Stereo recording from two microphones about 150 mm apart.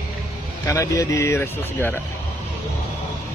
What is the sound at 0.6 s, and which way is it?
Speech, 20° left (ahead or behind).